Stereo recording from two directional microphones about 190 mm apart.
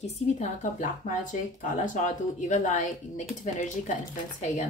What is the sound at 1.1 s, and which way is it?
Speech, 40° left (ahead or behind).